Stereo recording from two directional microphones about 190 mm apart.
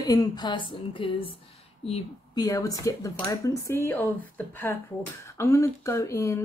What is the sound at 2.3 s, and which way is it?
Speech, 20° left (ahead or behind).